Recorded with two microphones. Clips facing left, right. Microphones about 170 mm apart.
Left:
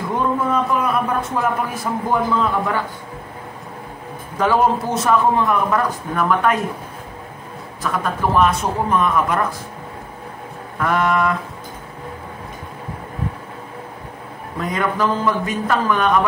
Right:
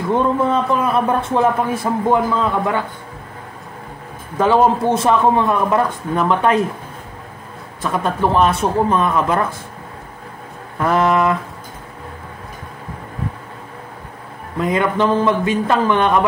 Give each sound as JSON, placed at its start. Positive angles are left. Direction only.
{"t": 0.1, "sound": "a man's voice", "side_deg": -25}
{"t": 4.4, "sound": "a man's voice", "side_deg": -25}
{"t": 7.8, "sound": "a man's voice", "side_deg": -30}
{"t": 10.8, "sound": "a man's voice", "side_deg": -30}
{"t": 14.7, "sound": "a man's voice", "side_deg": -25}